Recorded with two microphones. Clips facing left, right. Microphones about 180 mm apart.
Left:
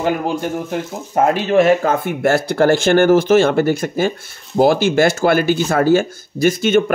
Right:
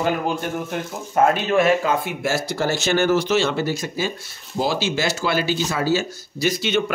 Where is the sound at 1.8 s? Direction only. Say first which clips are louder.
Left 5 dB; 55° left (ahead or behind).